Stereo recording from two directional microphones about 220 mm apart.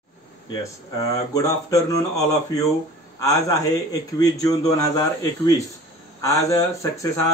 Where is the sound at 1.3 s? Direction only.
15° left (ahead or behind).